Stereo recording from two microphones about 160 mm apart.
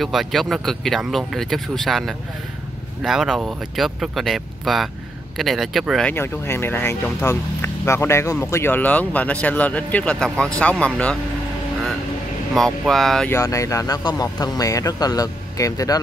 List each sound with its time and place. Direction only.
0.0 s speech: centre (ahead or behind)
6.1 s speech: 15° left (ahead or behind)
12.5 s speech: centre (ahead or behind)
13.3 s speech: 20° left (ahead or behind)